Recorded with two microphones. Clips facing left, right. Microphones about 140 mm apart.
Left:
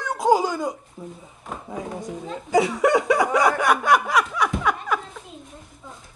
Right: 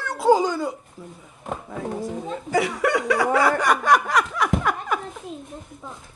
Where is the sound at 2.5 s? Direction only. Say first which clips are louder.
Left 3 dB; 25° left (ahead or behind).